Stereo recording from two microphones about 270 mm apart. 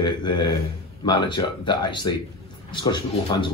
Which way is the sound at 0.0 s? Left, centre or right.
Centre.